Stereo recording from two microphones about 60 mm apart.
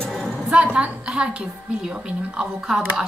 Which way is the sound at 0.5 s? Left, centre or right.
Right.